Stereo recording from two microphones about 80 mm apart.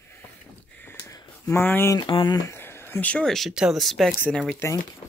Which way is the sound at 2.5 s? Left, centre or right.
Left.